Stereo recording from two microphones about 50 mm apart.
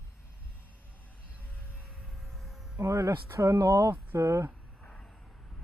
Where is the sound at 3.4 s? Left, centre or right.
Right.